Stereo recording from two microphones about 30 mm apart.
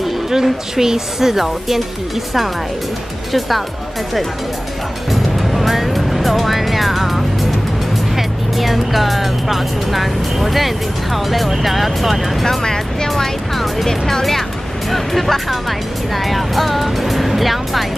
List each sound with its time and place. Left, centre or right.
0.0 s speech: centre
3.3 s speech: centre
5.1 s music: centre
8.2 s speech: centre
12.6 s speech: left
13.2 s speech: centre
14.9 s speech: centre